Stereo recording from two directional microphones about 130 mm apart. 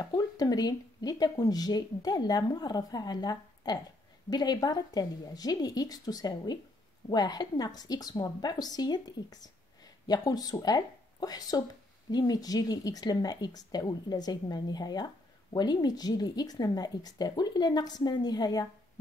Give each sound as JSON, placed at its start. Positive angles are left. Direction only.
{"t": 0.0, "sound": "a woman's voice", "side_deg": 30}